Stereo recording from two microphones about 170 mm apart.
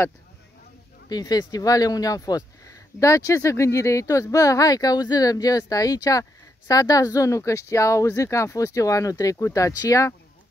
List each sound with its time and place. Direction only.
1.0 s speech: 25° left (ahead or behind)